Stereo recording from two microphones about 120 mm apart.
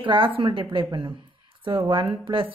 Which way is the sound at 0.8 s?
40° right (ahead or behind).